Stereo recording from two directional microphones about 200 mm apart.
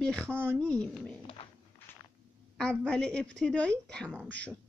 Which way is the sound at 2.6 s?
5° left (ahead or behind).